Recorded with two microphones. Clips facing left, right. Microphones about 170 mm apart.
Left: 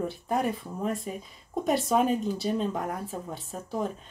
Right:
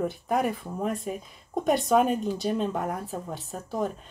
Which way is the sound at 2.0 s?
Centre (ahead or behind).